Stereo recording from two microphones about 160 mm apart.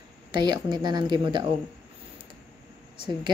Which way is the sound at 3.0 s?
30° right (ahead or behind).